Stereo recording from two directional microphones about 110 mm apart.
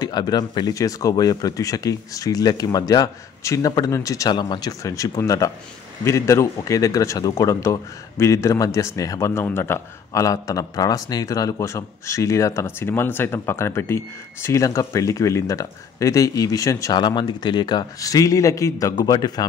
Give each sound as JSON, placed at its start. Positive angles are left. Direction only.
{"t": 0.0, "sound": "speech", "side_deg": 40}
{"t": 17.0, "sound": "speech", "side_deg": 45}